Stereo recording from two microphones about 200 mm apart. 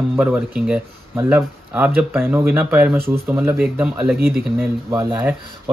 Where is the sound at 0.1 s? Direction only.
10° right (ahead or behind).